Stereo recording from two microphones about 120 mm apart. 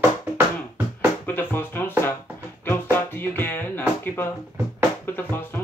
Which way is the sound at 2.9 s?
15° left (ahead or behind).